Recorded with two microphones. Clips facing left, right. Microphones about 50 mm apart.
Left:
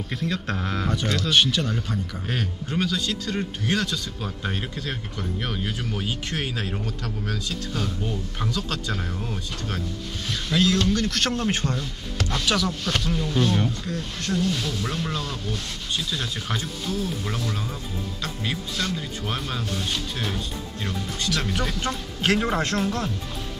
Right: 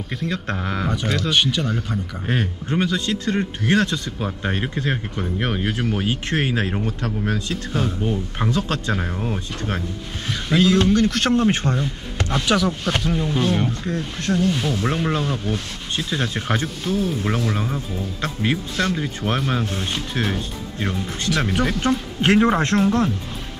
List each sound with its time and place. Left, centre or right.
0.1 s speech: centre
2.2 s speech: right